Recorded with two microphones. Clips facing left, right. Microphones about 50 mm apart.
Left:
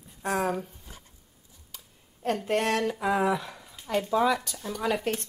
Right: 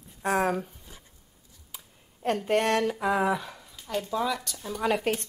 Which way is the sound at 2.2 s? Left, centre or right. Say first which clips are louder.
Right 2 dB; centre.